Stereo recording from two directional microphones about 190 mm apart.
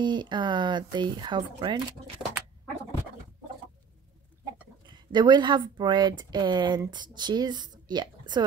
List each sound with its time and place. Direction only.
0.0 s speech: 25° right (ahead or behind)
4.8 s speech: 25° right (ahead or behind)